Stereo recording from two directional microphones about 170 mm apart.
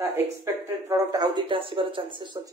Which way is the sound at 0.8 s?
20° right (ahead or behind).